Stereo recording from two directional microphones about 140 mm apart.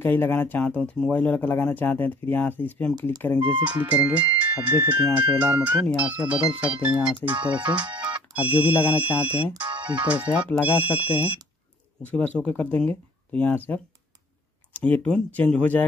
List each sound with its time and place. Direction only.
0.0 s speech: 15° left (ahead or behind)
3.7 s speech: 10° right (ahead or behind)
7.2 s speech: 35° right (ahead or behind)
7.6 s speech: 10° right (ahead or behind)
9.5 s speech: 35° right (ahead or behind)
9.9 s speech: 10° right (ahead or behind)
12.0 s speech: 10° left (ahead or behind)
14.7 s speech: 10° left (ahead or behind)